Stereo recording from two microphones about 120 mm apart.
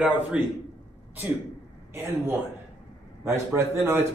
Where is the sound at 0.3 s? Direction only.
10° right (ahead or behind).